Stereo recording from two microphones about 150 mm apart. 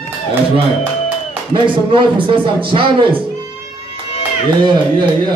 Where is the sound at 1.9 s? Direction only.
35° right (ahead or behind).